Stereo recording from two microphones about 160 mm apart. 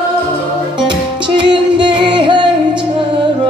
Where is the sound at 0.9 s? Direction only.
30° right (ahead or behind).